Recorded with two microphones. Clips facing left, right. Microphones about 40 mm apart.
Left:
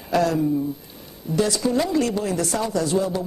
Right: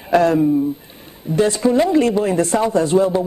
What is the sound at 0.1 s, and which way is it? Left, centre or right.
Speech, right.